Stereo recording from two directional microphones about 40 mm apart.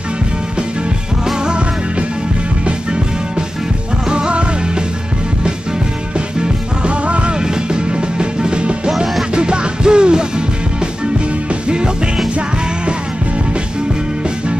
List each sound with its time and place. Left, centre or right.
1.2 s music: centre
6.1 s music: right
8.9 s music: centre
9.3 s music: right